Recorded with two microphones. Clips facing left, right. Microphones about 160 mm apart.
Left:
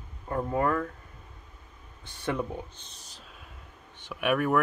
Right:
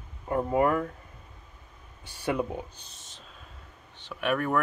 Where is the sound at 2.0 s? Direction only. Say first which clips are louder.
Right 2 dB; 10° right (ahead or behind).